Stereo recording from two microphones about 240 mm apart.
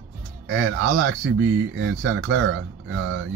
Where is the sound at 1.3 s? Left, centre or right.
Right.